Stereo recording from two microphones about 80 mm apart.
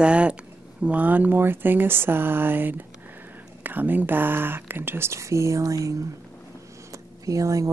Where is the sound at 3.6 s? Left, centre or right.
Right.